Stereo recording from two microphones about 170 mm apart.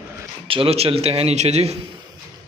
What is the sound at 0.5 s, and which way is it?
A man's voice, 35° right (ahead or behind).